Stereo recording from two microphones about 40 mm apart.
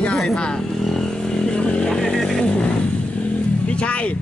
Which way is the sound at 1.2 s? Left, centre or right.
Left.